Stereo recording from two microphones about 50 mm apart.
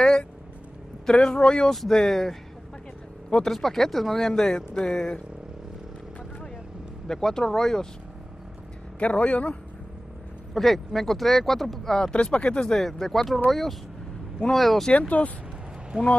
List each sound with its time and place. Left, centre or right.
1.0 s speech: centre
3.4 s speech: centre
7.1 s speech: centre
9.0 s speech: left
10.5 s speech: centre
12.1 s speech: left
12.7 s speech: centre
14.9 s speech: left